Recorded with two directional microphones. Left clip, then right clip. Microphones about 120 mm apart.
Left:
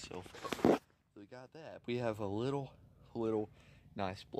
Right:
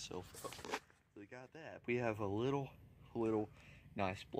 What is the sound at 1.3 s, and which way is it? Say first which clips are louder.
Speech: left 2 dB; 15° left (ahead or behind).